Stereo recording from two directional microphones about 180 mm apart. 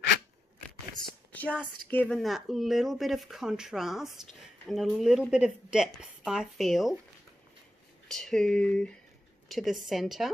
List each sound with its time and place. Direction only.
1.3 s a sound: 10° left (ahead or behind)
1.9 s speech: 5° left (ahead or behind)
8.1 s speech: 5° left (ahead or behind)